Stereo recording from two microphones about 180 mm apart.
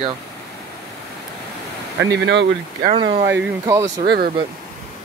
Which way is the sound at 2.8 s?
30° right (ahead or behind).